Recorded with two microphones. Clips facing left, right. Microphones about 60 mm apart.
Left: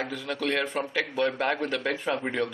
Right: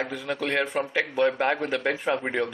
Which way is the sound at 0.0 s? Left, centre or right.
Centre.